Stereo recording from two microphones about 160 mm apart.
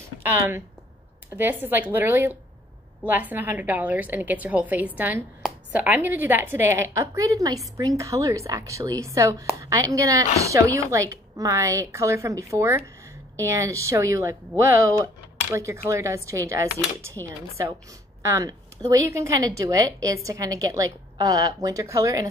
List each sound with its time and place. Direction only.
1.3 s a woman's voice: 10° right (ahead or behind)
18.2 s a woman's voice: 20° right (ahead or behind)